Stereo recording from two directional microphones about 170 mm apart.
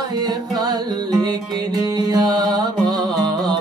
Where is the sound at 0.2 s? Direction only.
25° right (ahead or behind).